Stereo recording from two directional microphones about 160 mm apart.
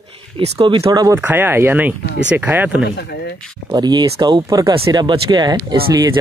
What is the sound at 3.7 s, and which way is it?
Speech, 25° right (ahead or behind).